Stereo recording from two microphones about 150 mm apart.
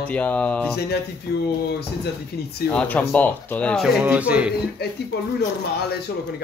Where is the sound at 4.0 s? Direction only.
10° right (ahead or behind).